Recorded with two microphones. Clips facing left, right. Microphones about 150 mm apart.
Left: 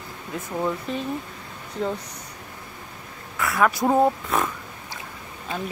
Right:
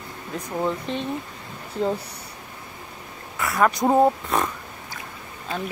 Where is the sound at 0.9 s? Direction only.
30° right (ahead or behind).